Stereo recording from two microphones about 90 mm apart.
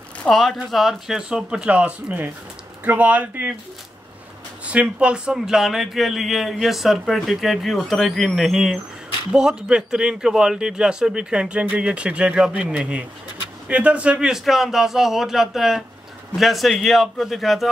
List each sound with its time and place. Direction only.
0.3 s a man's voice: 5° left (ahead or behind); by 3.5 s 20° right (ahead or behind)
4.6 s a man's voice: 15° right (ahead or behind)